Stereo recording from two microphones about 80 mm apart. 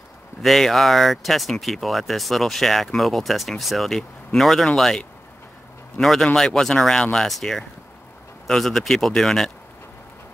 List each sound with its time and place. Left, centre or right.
0.4 s speech: centre